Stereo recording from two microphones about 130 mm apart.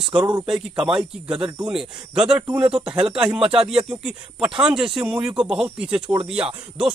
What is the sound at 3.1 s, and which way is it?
Speech, 40° right (ahead or behind).